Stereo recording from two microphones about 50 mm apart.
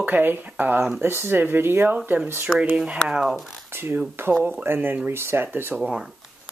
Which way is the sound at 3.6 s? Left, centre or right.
Right.